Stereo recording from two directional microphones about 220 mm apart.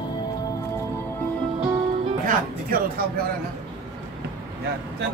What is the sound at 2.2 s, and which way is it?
Music, 40° right (ahead or behind).